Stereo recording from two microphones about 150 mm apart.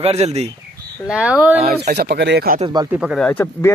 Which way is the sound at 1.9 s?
90° right.